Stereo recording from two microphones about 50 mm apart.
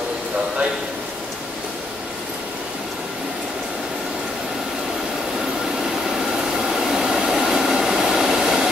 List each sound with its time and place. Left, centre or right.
6.7 s train: centre